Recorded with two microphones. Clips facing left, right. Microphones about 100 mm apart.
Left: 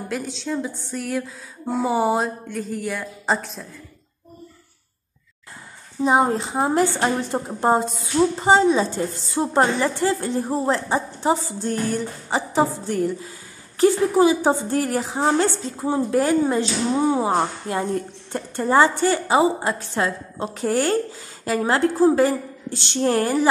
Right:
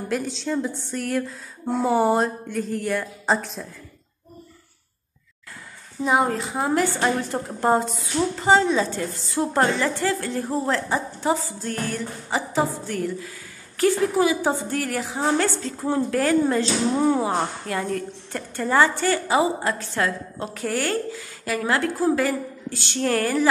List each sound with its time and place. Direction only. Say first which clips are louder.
0.1 s speech: right 2 dB; centre (ahead or behind)
6.0 s a woman's voice: left 3 dB; 25° left (ahead or behind)